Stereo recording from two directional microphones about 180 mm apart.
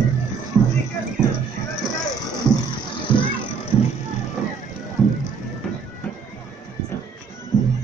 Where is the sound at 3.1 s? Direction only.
25° left (ahead or behind).